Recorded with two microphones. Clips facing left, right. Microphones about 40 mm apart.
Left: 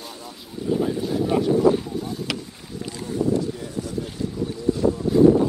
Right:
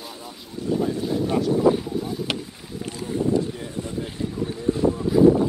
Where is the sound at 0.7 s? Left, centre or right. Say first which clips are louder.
Left 1 dB; centre.